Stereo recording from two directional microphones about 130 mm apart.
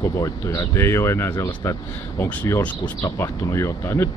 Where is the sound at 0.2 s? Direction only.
25° left (ahead or behind).